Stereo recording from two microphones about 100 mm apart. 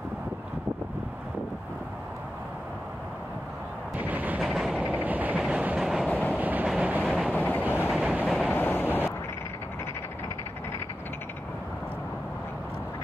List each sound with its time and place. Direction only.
3.9 s artillery fire: 15° right (ahead or behind)
4.4 s train: 5° right (ahead or behind)
4.8 s vehicle: 15° right (ahead or behind)
5.4 s train: 10° right (ahead or behind)
6.0 s train: 15° left (ahead or behind)
6.3 s train: 15° right (ahead or behind)
7.3 s train: 20° left (ahead or behind)
7.9 s train: 10° right (ahead or behind)
8.5 s vehicle: 20° left (ahead or behind)